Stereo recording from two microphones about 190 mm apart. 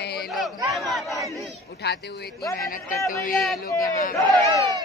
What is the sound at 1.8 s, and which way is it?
A man's voice, 60° left (ahead or behind).